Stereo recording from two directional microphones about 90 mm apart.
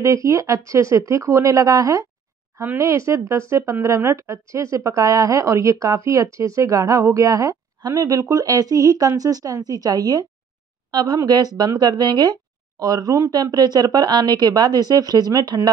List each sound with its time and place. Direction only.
0.0 s a woman's voice: 35° right (ahead or behind)